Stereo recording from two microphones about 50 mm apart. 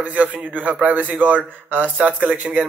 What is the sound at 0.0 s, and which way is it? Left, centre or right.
Speech, right.